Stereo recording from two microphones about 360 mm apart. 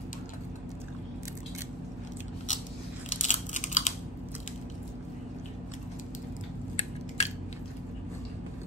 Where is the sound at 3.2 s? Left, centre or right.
Centre.